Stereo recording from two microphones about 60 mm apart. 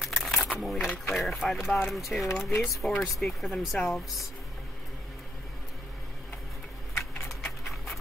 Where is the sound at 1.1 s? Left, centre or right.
Centre.